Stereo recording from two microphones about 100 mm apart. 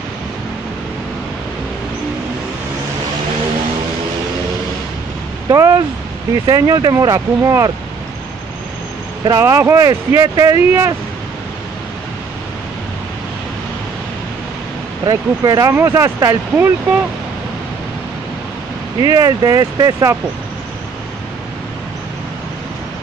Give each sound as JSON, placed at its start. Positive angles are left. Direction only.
{"t": 5.5, "sound": "speech", "side_deg": -40}
{"t": 9.3, "sound": "speech", "side_deg": -30}
{"t": 15.0, "sound": "speech", "side_deg": -40}
{"t": 16.5, "sound": "speech", "side_deg": -20}
{"t": 18.9, "sound": "speech", "side_deg": -35}